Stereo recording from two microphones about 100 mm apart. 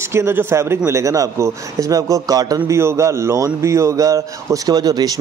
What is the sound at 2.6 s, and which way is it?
A man's voice, 30° right (ahead or behind).